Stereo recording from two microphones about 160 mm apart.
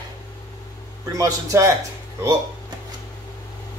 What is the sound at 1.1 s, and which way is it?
Speech, 20° right (ahead or behind).